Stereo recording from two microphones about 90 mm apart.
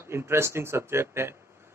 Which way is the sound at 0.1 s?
30° right (ahead or behind).